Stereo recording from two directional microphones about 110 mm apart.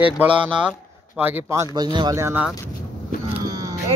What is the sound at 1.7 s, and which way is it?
Speech, 40° right (ahead or behind).